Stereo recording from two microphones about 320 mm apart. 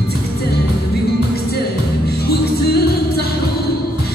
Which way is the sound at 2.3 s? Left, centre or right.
Left.